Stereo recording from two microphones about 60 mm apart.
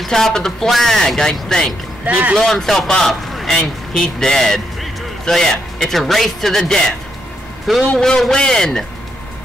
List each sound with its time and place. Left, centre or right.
0.0 s a man's voice: centre
2.0 s speech: right
2.3 s a man's voice: centre